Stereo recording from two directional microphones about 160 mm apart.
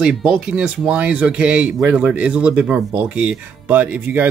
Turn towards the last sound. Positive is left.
turn(degrees=-10)  # may be behind; listen again after turning